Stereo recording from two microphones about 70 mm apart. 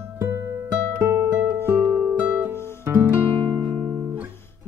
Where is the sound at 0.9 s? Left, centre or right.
Right.